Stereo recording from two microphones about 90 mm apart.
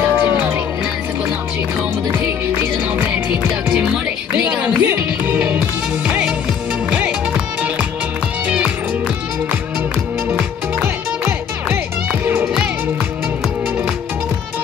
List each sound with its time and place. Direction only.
4.5 s music: 15° right (ahead or behind)
10.8 s music: 25° right (ahead or behind)
12.1 s music: 15° right (ahead or behind)